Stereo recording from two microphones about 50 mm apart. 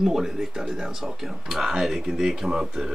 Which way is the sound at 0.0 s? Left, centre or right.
Centre.